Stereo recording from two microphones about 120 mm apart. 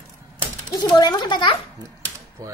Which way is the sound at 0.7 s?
35° left (ahead or behind).